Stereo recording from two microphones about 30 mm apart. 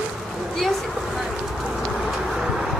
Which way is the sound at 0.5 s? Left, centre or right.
Centre.